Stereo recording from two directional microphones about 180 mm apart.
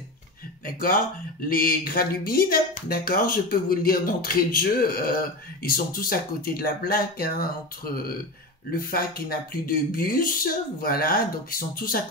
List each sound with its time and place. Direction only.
0.7 s speech: 50° left (ahead or behind)